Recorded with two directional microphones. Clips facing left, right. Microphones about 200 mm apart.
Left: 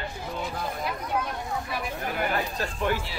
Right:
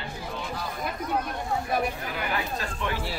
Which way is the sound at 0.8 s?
50° right (ahead or behind).